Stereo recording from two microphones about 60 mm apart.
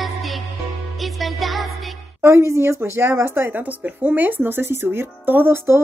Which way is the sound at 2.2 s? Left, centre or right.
Right.